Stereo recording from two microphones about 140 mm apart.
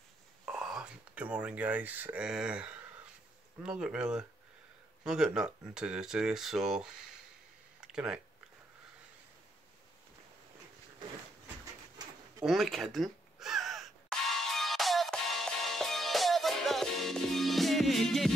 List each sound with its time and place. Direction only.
0.5 s speech: 5° right (ahead or behind)
7.8 s a sound: 5° right (ahead or behind)
12.0 s bird: 30° right (ahead or behind)
12.4 s gasp: centre (ahead or behind)